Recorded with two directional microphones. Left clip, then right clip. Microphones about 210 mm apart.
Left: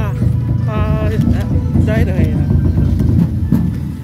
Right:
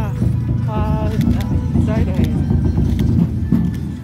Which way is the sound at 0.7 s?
40° left (ahead or behind).